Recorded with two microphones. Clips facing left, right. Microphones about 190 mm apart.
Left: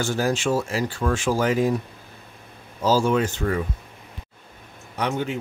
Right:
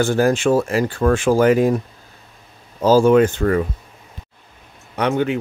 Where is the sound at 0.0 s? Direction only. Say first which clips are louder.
Right 7 dB; 55° right (ahead or behind).